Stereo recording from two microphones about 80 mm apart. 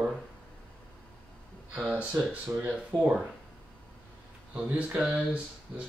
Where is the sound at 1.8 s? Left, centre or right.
Centre.